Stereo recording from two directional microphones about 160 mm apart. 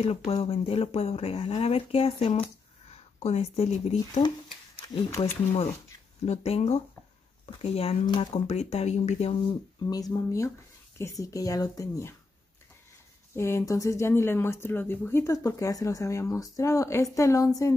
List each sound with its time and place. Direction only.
0.0 s speech: 40° left (ahead or behind)
4.8 s speech: 25° left (ahead or behind)
6.2 s a woman's voice: 40° left (ahead or behind); by 12.2 s 20° left (ahead or behind)
13.3 s a woman's voice: 15° left (ahead or behind)